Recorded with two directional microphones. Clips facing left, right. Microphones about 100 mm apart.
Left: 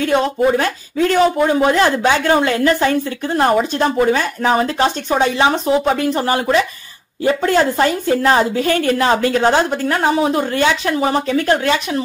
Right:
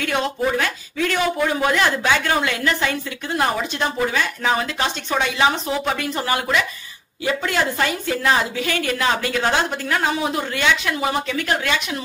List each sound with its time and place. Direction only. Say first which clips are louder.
0.0 s speech: left 7 dB; 35° left (ahead or behind)